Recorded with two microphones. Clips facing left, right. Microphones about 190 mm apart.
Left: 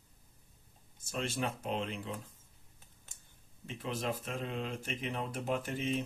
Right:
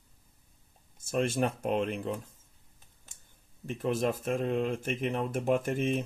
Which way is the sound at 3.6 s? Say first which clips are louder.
Right 8 dB; 50° right (ahead or behind).